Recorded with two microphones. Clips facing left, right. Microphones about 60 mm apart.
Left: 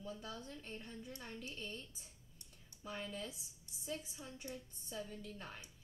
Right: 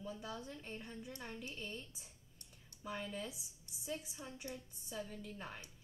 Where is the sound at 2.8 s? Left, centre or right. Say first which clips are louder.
Right 2 dB; centre.